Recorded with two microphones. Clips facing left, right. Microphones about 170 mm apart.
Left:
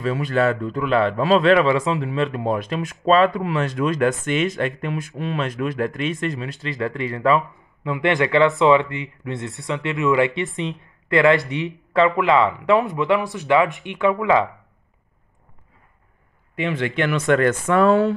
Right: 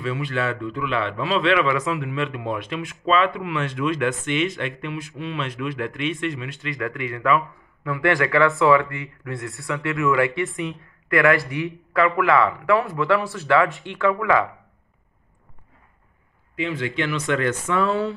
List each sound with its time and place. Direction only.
0.0 s a man's voice: 40° left (ahead or behind); by 14.5 s 20° left (ahead or behind)
16.5 s speech: 60° left (ahead or behind)